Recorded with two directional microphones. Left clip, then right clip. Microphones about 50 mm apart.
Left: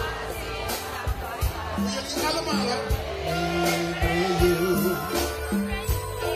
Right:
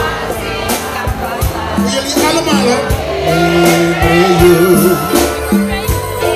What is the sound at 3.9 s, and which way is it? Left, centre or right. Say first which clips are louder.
Music: right 15 dB; centre.